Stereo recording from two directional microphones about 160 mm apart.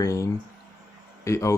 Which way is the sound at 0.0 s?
20° left (ahead or behind).